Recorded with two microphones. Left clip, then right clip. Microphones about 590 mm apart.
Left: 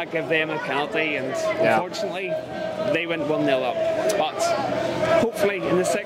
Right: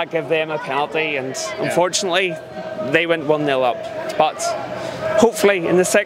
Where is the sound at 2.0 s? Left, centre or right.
Right.